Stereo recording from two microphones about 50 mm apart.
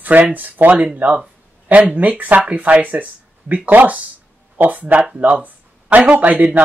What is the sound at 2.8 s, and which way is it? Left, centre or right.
Speech, right.